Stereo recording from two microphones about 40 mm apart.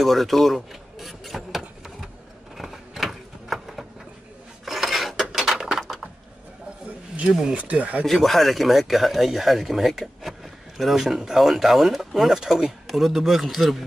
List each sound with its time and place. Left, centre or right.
0.0 s a man's voice: centre
0.6 s rub: centre
2.5 s a sound: centre
4.6 s dishes: centre
7.5 s speech: right
8.0 s a man's voice: centre